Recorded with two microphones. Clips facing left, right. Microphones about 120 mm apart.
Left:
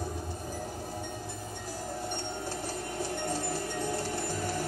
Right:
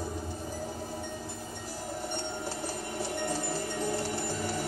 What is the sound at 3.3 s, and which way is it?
Music, 20° right (ahead or behind).